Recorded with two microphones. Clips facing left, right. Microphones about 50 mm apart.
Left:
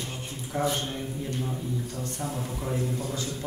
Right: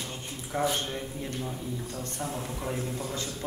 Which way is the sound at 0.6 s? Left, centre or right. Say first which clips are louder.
Left 1 dB; right.